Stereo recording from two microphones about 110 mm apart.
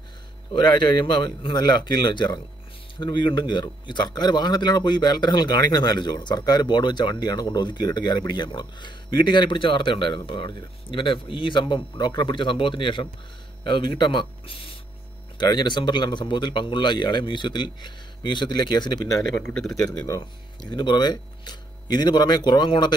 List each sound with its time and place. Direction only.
0.5 s speech: 45° left (ahead or behind)
19.3 s a man's voice: 5° left (ahead or behind)
20.7 s speech: 40° left (ahead or behind)